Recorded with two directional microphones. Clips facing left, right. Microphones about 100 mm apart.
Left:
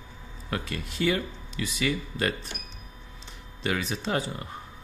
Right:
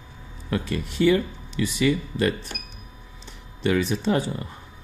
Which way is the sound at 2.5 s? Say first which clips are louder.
Right 3 dB; 40° right (ahead or behind).